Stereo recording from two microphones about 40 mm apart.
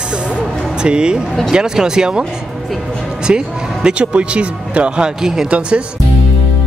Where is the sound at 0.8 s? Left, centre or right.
Right.